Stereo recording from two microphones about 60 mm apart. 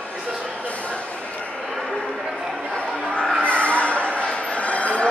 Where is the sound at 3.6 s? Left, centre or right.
Left.